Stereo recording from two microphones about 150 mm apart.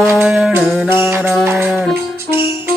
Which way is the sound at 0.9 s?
15° right (ahead or behind).